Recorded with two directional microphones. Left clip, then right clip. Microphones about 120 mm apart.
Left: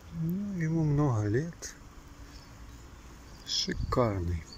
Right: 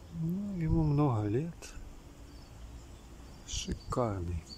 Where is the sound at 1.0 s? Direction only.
15° right (ahead or behind).